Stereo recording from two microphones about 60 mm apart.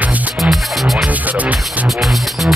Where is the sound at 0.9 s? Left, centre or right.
Right.